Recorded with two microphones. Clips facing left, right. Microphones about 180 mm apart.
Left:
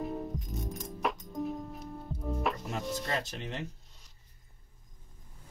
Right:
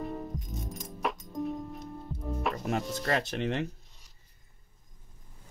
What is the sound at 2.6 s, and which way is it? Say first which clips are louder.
Speech: right 4 dB; 70° right (ahead or behind).